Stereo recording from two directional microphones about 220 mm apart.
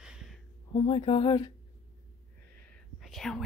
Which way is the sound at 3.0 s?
Centre (ahead or behind).